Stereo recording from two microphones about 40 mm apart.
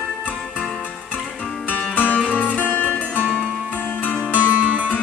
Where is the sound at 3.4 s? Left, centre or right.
Right.